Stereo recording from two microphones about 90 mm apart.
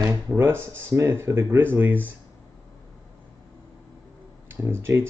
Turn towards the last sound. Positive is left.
turn(degrees=-30)  # may be behind; listen again after turning